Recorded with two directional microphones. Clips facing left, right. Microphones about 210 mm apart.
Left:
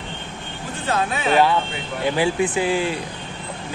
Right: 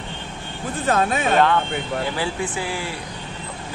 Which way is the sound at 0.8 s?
45° right (ahead or behind).